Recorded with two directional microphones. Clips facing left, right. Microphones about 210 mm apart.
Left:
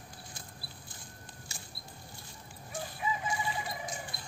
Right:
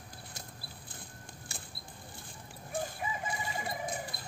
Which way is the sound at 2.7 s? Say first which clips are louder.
Even; 55° right (ahead or behind).